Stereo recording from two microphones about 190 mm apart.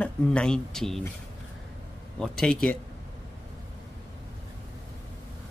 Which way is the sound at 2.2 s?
5° left (ahead or behind).